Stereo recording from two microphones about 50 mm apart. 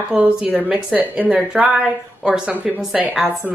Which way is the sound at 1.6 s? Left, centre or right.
Right.